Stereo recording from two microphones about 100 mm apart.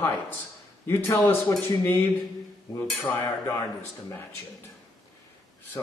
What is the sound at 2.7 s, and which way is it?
Cutlery, 35° left (ahead or behind).